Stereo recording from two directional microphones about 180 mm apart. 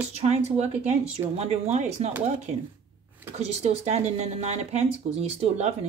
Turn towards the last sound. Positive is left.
turn(degrees=-35)  # may be behind; listen again after turning